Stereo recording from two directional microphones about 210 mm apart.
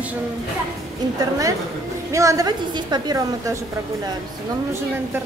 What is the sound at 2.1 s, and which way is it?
A woman's voice, 15° right (ahead or behind).